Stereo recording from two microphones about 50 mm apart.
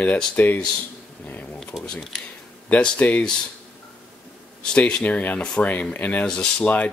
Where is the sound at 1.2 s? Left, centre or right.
Left.